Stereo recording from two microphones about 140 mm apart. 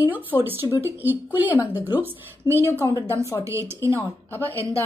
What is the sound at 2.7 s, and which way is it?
Speech, 15° left (ahead or behind).